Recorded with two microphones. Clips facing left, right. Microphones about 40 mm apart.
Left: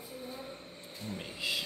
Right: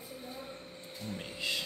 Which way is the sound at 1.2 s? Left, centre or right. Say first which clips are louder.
Even; centre.